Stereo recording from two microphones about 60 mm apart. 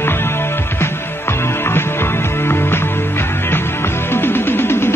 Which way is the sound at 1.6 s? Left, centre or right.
Left.